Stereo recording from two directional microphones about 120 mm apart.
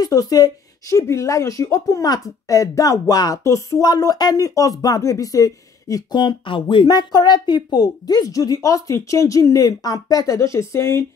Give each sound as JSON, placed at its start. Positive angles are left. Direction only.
{"t": 0.0, "sound": "speech", "side_deg": 30}